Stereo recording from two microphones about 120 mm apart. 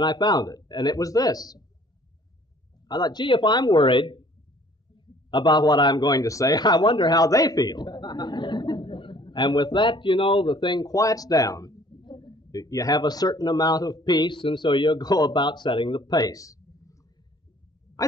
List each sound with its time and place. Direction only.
0.0 s speech: 35° left (ahead or behind)
2.9 s speech: 35° left (ahead or behind)
16.2 s a sound: 30° left (ahead or behind)